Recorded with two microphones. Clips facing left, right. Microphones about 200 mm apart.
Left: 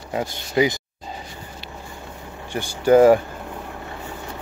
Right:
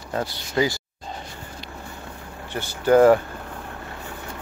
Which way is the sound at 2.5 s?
10° left (ahead or behind).